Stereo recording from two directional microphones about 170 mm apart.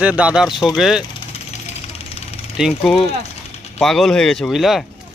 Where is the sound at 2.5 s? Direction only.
Centre (ahead or behind).